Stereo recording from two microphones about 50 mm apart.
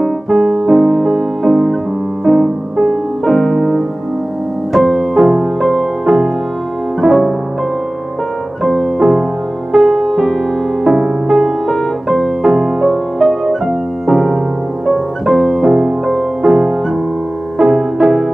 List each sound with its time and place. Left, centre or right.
0.0 s music: centre
2.8 s music: centre
8.6 s music: centre